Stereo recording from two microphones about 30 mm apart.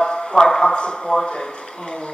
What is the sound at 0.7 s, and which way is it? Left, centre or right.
Speech, left.